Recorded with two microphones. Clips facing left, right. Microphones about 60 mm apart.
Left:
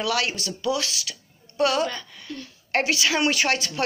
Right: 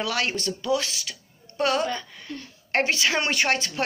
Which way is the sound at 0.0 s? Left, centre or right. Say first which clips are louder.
Left 1 dB; right.